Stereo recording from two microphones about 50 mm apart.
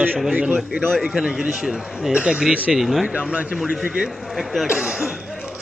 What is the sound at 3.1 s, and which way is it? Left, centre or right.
Speech, centre.